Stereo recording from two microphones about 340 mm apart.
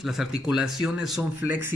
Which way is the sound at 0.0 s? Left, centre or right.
Centre.